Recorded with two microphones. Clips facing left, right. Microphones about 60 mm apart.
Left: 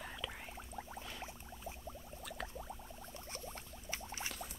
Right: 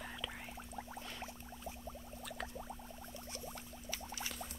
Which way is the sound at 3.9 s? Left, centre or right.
Left.